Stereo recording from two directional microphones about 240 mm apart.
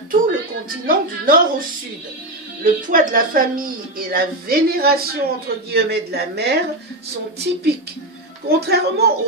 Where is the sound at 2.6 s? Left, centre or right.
Right.